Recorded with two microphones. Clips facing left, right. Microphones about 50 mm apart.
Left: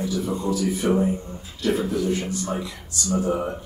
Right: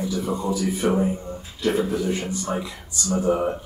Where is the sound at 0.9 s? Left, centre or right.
Centre.